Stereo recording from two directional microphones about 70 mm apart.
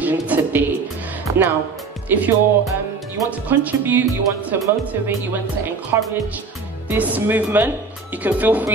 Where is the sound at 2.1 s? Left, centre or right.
Right.